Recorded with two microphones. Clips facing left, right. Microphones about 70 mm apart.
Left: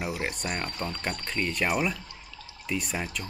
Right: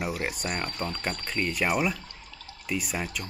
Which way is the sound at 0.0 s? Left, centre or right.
Centre.